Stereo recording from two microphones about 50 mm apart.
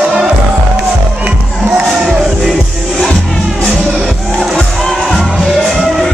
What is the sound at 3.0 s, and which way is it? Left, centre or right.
Music, centre.